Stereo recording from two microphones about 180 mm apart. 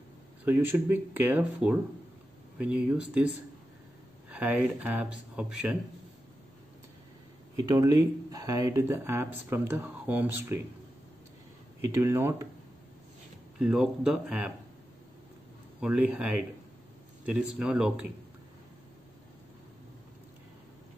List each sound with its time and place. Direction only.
0.5 s speech: 10° right (ahead or behind)
7.5 s speech: 20° right (ahead or behind)
11.8 s speech: 15° right (ahead or behind)
13.6 s speech: 5° right (ahead or behind)
15.8 s speech: 5° right (ahead or behind)